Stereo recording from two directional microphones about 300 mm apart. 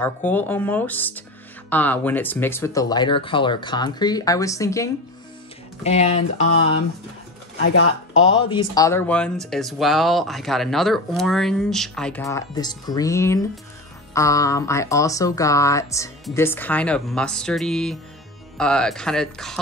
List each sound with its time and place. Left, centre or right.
0.0 s speech: centre
5.9 s speech: left
7.6 s speech: left
8.4 s speech: centre